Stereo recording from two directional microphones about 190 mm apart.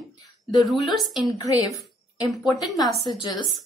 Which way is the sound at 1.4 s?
20° left (ahead or behind).